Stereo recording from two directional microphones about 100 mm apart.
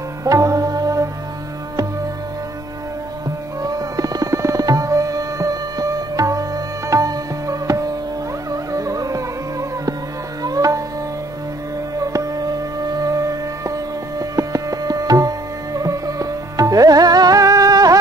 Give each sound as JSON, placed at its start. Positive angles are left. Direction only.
{"t": 0.2, "sound": "music", "side_deg": -35}
{"t": 3.6, "sound": "tabla", "side_deg": -35}
{"t": 8.5, "sound": "music", "side_deg": -35}
{"t": 12.0, "sound": "music", "side_deg": -35}